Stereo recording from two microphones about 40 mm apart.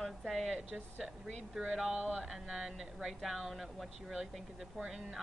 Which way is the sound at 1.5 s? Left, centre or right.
Centre.